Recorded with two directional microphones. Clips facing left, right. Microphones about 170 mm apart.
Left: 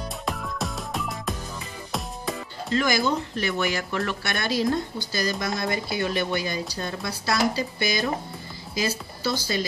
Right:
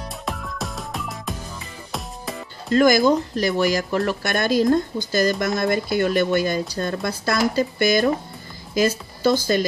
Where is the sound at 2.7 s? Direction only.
45° right (ahead or behind).